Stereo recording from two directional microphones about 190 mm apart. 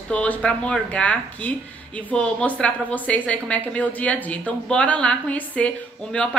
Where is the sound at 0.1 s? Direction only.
5° left (ahead or behind).